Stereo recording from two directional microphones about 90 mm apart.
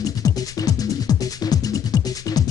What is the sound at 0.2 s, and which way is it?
Music, 40° left (ahead or behind).